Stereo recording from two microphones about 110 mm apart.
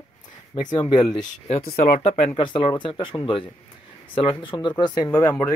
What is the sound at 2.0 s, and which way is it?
Speech, 65° left (ahead or behind).